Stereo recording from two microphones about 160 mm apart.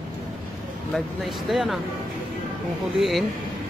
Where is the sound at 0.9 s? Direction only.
Centre (ahead or behind).